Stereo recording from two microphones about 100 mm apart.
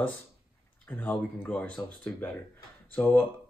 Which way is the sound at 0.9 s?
20° left (ahead or behind).